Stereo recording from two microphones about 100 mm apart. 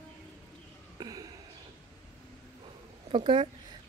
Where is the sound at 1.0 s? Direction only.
40° right (ahead or behind).